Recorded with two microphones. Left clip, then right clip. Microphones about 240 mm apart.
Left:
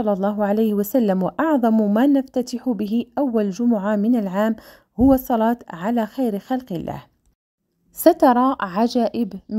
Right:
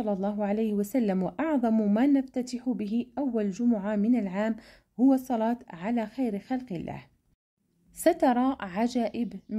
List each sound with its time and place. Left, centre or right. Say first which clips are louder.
0.0 s a woman's voice: left 9 dB; left